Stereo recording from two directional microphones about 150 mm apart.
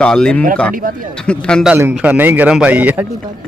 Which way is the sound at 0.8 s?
65° right (ahead or behind).